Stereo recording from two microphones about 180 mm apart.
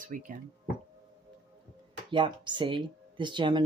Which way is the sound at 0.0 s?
45° right (ahead or behind).